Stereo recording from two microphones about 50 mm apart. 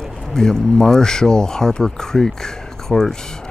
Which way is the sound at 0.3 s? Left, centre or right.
Centre.